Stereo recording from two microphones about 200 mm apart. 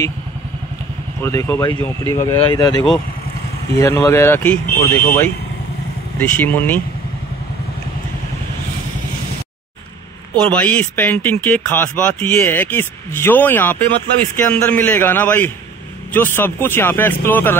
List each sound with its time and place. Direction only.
1.2 s speech: 15° left (ahead or behind)
2.1 s speech: 25° left (ahead or behind); by 6.8 s 10° left (ahead or behind)
10.5 s speech: 5° left (ahead or behind)